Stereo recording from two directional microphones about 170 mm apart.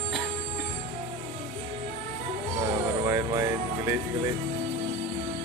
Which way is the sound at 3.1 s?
20° right (ahead or behind).